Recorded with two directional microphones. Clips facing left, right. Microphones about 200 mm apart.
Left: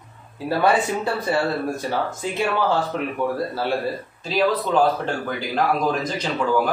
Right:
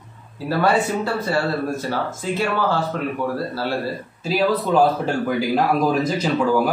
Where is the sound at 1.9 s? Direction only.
15° left (ahead or behind).